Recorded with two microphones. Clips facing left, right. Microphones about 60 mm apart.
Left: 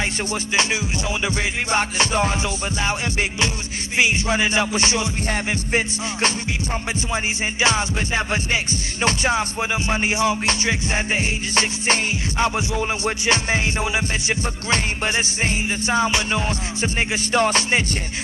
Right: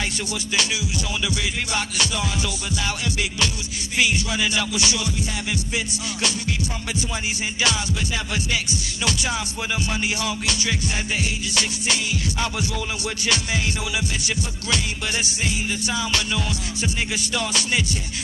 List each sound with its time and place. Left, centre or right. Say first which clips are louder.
1.2 s music: left 3 dB; left
7.6 s music: left 4 dB; left